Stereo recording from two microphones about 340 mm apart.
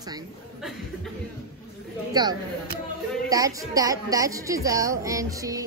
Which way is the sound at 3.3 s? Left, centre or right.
Centre.